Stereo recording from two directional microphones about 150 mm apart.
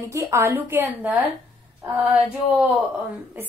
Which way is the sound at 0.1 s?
20° right (ahead or behind).